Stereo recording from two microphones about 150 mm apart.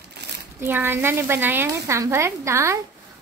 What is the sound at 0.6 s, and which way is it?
A woman's voice, 15° right (ahead or behind).